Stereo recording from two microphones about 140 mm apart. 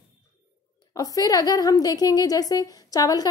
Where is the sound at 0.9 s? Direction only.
25° left (ahead or behind).